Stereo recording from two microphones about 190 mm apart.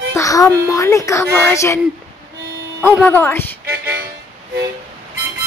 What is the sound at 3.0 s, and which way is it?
Speech, 10° left (ahead or behind).